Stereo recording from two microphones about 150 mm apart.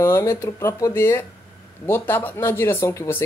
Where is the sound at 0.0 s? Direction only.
15° left (ahead or behind).